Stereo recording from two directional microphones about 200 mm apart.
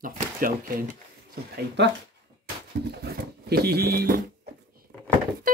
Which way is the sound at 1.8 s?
60° right (ahead or behind).